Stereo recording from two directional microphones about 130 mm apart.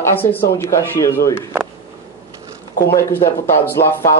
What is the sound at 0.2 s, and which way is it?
Speech, 15° left (ahead or behind).